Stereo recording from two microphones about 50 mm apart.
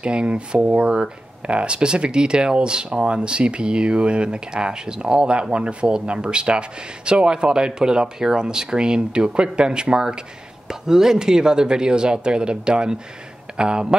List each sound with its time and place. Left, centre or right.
0.0 s speech: right